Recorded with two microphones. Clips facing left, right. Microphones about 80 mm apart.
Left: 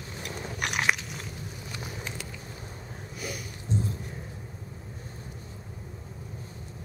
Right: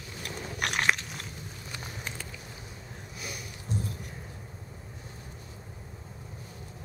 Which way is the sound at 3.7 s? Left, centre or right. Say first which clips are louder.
Left 4 dB; left.